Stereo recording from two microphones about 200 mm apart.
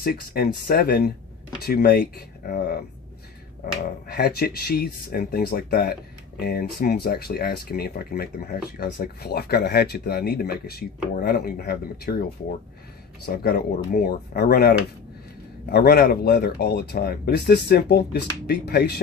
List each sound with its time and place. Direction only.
0.0 s speech: 50° left (ahead or behind)